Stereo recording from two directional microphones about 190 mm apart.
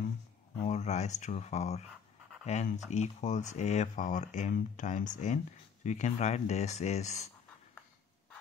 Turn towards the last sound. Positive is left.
turn(degrees=35)  # may be behind; listen again after turning